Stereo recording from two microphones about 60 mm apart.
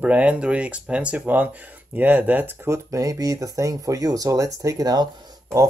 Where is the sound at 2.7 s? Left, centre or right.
Right.